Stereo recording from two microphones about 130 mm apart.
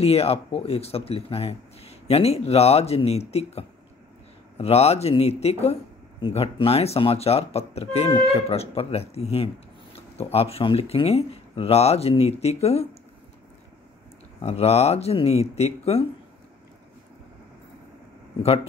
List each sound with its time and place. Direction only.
0.0 s speech: 50° left (ahead or behind)
14.4 s speech: 55° left (ahead or behind)